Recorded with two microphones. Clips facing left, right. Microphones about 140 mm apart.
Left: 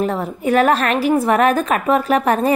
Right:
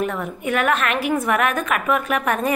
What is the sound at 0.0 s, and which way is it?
A woman's voice, 30° left (ahead or behind).